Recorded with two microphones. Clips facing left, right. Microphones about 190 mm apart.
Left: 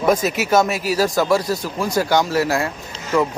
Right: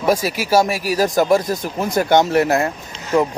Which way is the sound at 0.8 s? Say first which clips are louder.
Right 1 dB; 45° right (ahead or behind).